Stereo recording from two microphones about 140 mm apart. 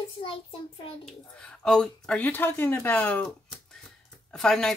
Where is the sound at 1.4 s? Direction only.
5° left (ahead or behind).